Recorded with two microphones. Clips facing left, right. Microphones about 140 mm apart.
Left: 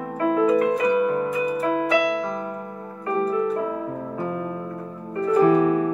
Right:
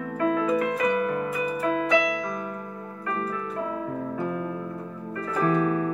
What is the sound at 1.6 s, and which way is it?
Music, 30° left (ahead or behind).